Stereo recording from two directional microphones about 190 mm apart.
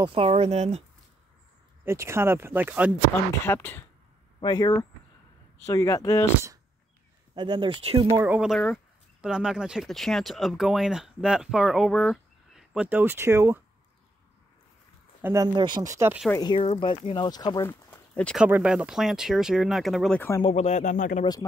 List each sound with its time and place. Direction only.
0.0 s speech: 30° right (ahead or behind)
1.9 s speech: 15° right (ahead or behind)
3.4 s speech: 10° left (ahead or behind)
4.4 s speech: 20° left (ahead or behind)
7.3 s speech: 25° right (ahead or behind)
8.1 s speech: 15° right (ahead or behind)
8.4 s speech: centre (ahead or behind)
15.2 s speech: 20° right (ahead or behind)
16.3 s speech: 25° left (ahead or behind); by 18.4 s 5° left (ahead or behind)
18.4 s speech: 5° right (ahead or behind); by 20.4 s 10° left (ahead or behind)
20.4 s speech: 35° left (ahead or behind)